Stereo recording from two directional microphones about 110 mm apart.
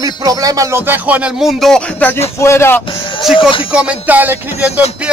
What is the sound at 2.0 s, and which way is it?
Speech, 20° left (ahead or behind).